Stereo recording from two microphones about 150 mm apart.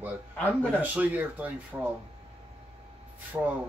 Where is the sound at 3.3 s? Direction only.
15° right (ahead or behind).